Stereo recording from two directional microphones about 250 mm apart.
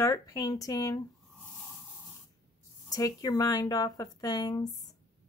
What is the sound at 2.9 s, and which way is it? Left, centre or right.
A woman's voice, centre.